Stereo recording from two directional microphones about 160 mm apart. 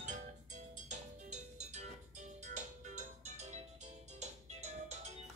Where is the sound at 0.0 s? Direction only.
50° right (ahead or behind).